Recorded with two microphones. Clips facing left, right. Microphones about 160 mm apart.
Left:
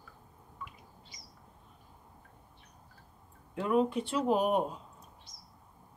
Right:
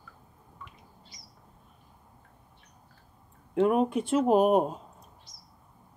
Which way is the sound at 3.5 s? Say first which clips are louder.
Right 5 dB; 55° right (ahead or behind).